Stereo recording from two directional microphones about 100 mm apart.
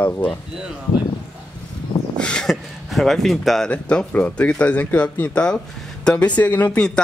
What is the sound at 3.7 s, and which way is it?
Speech, 10° left (ahead or behind).